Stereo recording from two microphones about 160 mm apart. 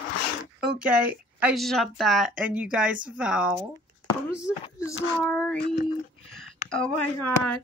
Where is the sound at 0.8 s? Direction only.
10° right (ahead or behind).